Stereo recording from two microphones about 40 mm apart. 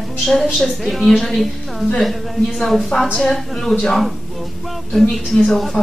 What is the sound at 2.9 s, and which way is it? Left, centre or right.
Speech, left.